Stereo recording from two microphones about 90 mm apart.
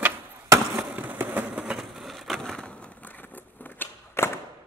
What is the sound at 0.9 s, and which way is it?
Vehicle, 20° right (ahead or behind).